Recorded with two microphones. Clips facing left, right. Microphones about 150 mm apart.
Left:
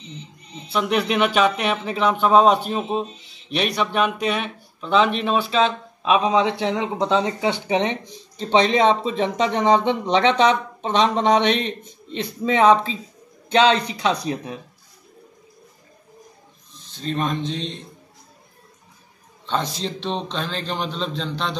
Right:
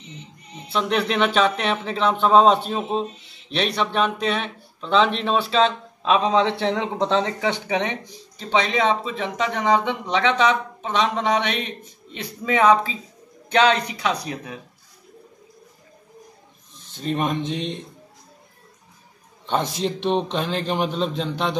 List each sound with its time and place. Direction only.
0.7 s speech: 5° left (ahead or behind)
7.6 s a man's voice: 25° left (ahead or behind)
17.0 s a man's voice: 15° right (ahead or behind)
19.8 s a man's voice: 15° right (ahead or behind)